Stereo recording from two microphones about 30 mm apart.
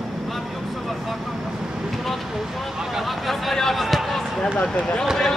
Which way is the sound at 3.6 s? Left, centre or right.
Centre.